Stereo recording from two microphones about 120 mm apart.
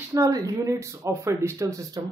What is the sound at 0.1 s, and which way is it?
Speech, 30° right (ahead or behind).